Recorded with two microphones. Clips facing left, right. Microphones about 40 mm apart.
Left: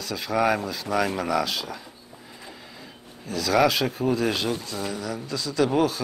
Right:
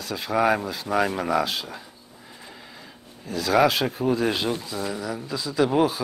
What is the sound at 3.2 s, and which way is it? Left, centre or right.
Speech, centre.